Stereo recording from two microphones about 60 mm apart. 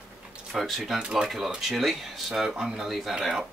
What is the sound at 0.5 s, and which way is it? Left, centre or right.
Speech, centre.